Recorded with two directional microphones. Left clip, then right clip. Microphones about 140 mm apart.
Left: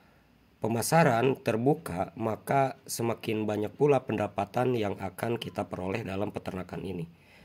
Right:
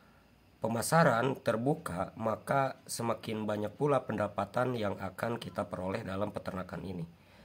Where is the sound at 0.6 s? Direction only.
30° left (ahead or behind).